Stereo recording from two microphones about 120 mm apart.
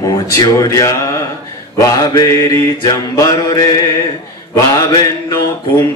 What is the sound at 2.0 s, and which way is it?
Mantra, 35° left (ahead or behind).